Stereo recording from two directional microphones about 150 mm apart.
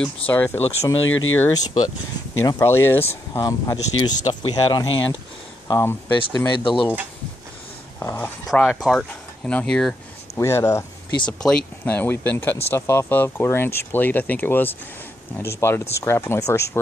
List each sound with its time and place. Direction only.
0.0 s speech: 15° left (ahead or behind)
1.5 s speech: 25° left (ahead or behind)
5.7 s speech: 20° left (ahead or behind)
8.0 s a sound: 20° left (ahead or behind)
8.5 s speech: centre (ahead or behind)
10.4 s speech: 20° left (ahead or behind)
11.2 s speech: 5° left (ahead or behind)